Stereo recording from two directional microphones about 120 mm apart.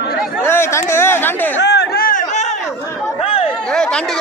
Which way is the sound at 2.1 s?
80° left.